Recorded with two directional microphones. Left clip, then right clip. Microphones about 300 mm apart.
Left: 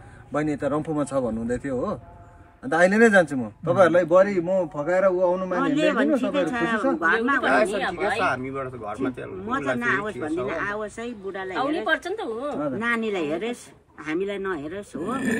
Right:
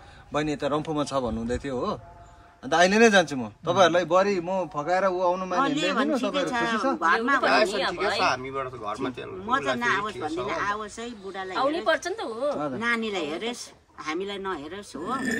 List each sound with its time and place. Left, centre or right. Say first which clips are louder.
0.3 s a man's voice: left 1 dB; centre